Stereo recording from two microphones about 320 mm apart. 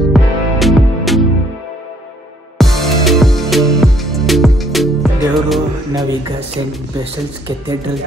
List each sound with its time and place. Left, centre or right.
0.0 s music: centre
2.6 s music: centre
7.4 s speech: centre